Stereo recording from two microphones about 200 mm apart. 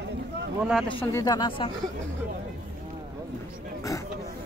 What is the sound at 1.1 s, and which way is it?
Speech, 20° left (ahead or behind).